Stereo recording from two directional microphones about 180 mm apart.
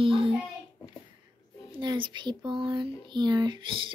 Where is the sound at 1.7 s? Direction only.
25° right (ahead or behind).